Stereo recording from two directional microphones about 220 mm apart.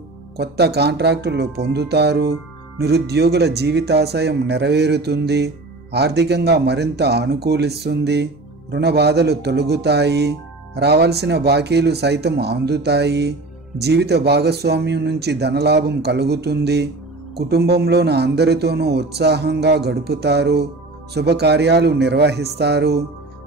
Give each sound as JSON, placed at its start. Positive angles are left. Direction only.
{"t": 0.4, "sound": "speech", "side_deg": -50}